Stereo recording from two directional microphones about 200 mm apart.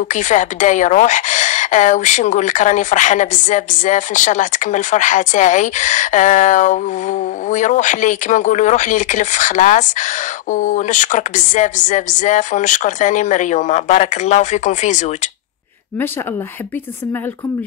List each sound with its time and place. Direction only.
0.1 s a woman's voice: 40° left (ahead or behind)